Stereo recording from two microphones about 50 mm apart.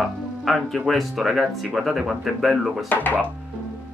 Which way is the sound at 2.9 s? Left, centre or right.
Left.